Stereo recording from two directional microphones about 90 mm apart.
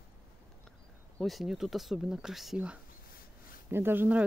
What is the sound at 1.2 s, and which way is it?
Speech, centre (ahead or behind).